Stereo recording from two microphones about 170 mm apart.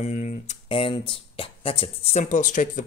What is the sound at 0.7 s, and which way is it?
Speech, 30° left (ahead or behind).